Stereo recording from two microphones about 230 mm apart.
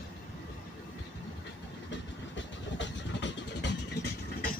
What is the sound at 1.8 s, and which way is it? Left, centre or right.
Vehicle, left.